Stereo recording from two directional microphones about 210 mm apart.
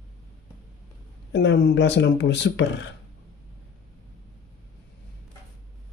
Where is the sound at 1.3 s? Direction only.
60° left (ahead or behind).